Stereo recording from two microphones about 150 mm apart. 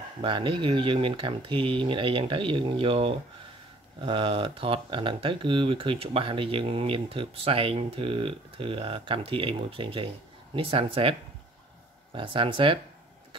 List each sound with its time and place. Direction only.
0.2 s speech: 35° right (ahead or behind)